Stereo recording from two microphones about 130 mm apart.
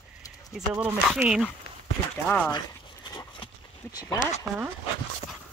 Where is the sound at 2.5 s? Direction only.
35° left (ahead or behind).